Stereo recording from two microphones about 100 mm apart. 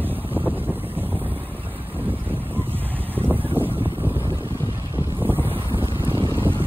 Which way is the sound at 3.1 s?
20° right (ahead or behind).